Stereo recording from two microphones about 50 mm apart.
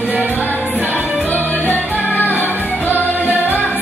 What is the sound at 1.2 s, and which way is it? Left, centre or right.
Music, left.